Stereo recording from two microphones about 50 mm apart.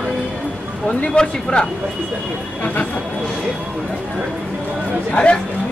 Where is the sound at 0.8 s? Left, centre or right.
Centre.